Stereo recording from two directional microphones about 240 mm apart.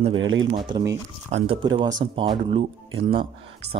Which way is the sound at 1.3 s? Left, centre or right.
Right.